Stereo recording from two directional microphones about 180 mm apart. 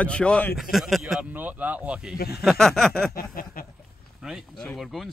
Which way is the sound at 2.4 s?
Centre (ahead or behind).